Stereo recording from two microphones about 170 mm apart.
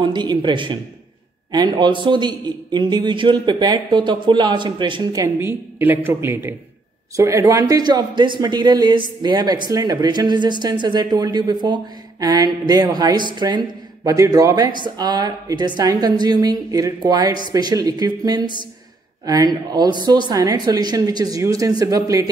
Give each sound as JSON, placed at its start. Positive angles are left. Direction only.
{"t": 0.0, "sound": "speech", "side_deg": -25}